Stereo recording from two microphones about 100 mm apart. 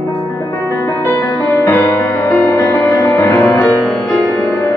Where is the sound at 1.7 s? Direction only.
20° left (ahead or behind).